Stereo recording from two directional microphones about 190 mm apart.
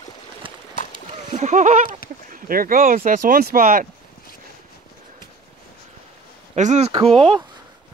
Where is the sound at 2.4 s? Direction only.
50° right (ahead or behind).